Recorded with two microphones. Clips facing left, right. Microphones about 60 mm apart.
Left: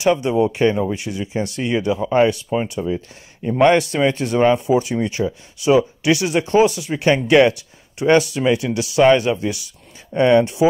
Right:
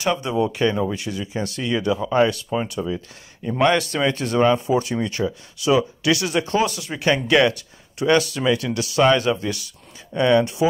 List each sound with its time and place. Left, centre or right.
0.0 s speech: left